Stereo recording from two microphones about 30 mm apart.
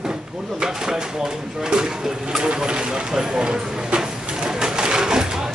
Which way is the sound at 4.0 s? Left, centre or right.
Centre.